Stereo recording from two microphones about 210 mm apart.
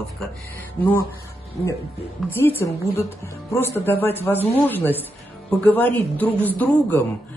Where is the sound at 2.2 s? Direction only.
Centre (ahead or behind).